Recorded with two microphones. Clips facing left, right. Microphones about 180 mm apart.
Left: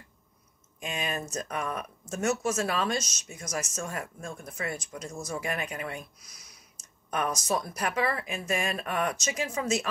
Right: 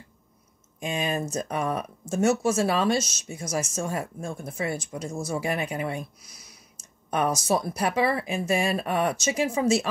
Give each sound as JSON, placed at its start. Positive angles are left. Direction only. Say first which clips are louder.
{"t": 0.7, "sound": "speech", "louder": "right 6 dB", "side_deg": -30}